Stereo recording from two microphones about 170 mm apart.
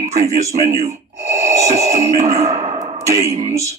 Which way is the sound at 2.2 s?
45° right (ahead or behind).